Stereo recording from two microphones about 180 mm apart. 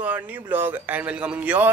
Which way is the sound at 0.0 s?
10° right (ahead or behind).